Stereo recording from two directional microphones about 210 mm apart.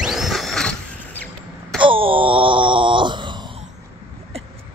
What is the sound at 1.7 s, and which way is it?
Wail, 25° right (ahead or behind).